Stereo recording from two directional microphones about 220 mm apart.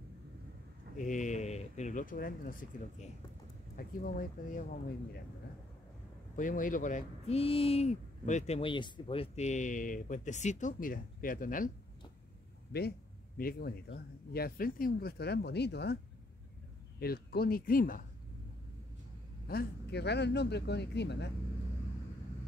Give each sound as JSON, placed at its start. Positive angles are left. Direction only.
{"t": 0.9, "sound": "speech", "side_deg": 35}
{"t": 3.7, "sound": "speech", "side_deg": 40}
{"t": 6.3, "sound": "speech", "side_deg": 35}
{"t": 12.7, "sound": "speech", "side_deg": 45}
{"t": 17.0, "sound": "speech", "side_deg": 45}
{"t": 19.4, "sound": "speech", "side_deg": 45}